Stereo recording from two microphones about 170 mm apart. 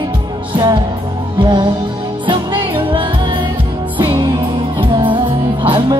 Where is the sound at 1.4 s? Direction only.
25° right (ahead or behind).